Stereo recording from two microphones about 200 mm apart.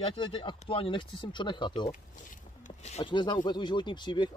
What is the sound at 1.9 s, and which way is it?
Speech, 40° left (ahead or behind).